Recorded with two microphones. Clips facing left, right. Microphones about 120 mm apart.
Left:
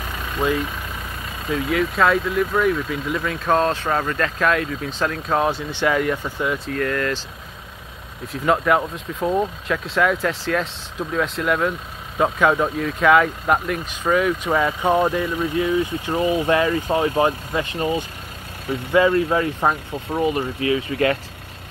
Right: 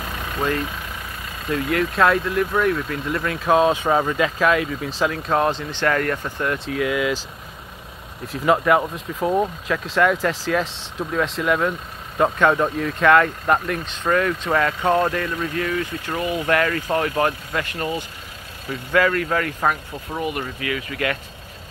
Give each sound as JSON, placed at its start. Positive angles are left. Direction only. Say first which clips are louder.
{"t": 0.4, "sound": "speech", "louder": "left 2 dB", "side_deg": 5}
{"t": 8.3, "sound": "speech", "louder": "right 1 dB", "side_deg": 0}